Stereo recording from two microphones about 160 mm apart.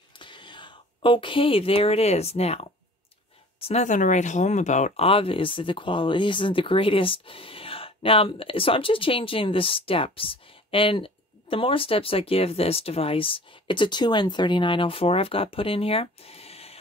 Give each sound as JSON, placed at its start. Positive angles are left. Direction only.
{"t": 0.2, "sound": "speech", "side_deg": 30}